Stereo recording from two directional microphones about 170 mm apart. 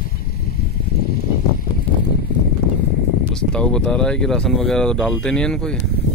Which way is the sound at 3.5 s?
5° left (ahead or behind).